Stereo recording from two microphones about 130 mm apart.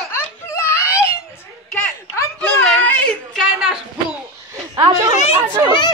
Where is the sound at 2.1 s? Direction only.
20° left (ahead or behind).